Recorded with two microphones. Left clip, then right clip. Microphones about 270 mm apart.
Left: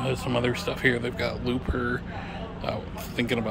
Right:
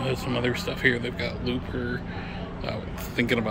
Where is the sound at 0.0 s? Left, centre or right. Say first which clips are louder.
Left 1 dB; centre.